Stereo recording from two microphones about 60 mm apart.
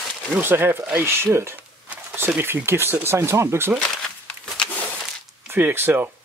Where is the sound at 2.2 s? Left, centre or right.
Right.